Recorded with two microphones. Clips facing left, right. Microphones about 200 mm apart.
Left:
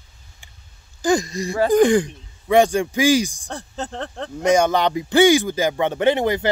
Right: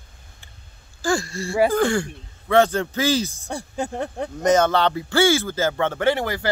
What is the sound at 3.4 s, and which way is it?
Speech, 10° right (ahead or behind).